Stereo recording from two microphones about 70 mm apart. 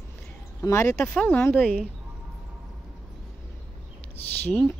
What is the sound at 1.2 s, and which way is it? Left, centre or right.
Speech, left.